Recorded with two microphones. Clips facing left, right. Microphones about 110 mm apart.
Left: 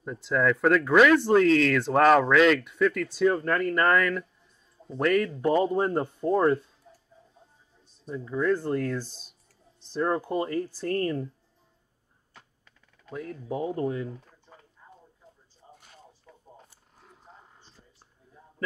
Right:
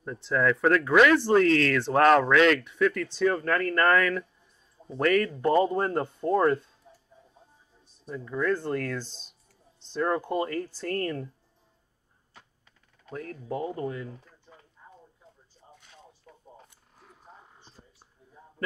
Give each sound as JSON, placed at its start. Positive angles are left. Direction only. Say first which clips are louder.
{"t": 0.0, "sound": "speech", "louder": "left 1 dB", "side_deg": 5}
{"t": 8.1, "sound": "speech", "louder": "left 2 dB", "side_deg": 5}
{"t": 13.1, "sound": "speech", "louder": "left 1 dB", "side_deg": 5}
{"t": 15.6, "sound": "a sound", "louder": "left 2 dB", "side_deg": 0}
{"t": 17.8, "sound": "whispering", "louder": "right 3 dB", "side_deg": -35}